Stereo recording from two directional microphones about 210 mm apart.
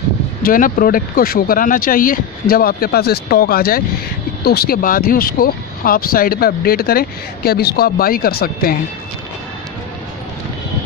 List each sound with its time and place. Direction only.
0.4 s speech: 40° left (ahead or behind)